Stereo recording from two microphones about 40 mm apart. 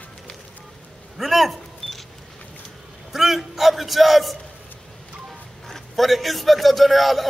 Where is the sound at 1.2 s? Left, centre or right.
Centre.